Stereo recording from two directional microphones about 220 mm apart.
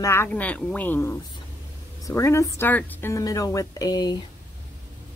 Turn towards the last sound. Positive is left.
turn(degrees=15)  # may be behind; listen again after turning